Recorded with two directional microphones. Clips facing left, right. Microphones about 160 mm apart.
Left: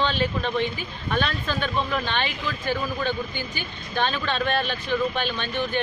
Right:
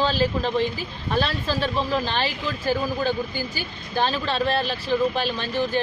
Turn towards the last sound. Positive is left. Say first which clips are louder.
# right 2 dB
turn(degrees=-35)  # may be behind; listen again after turning